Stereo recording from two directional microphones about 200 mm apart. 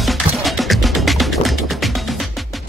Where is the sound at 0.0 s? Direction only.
Centre (ahead or behind).